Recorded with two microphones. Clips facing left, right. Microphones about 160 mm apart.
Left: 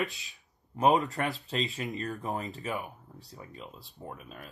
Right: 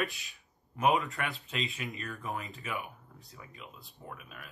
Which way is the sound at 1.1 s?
40° left (ahead or behind).